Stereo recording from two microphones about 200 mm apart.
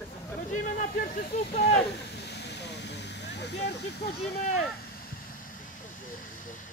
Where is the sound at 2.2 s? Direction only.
55° left (ahead or behind).